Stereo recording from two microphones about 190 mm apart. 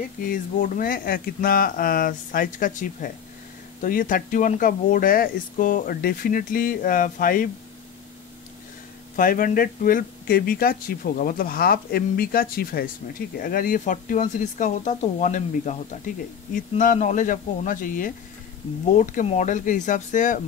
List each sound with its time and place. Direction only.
0.2 s speech: 45° left (ahead or behind)
9.1 s speech: 45° left (ahead or behind)